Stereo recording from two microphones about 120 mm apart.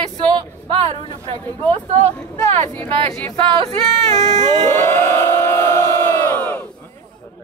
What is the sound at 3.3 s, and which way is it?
Speech, 50° right (ahead or behind).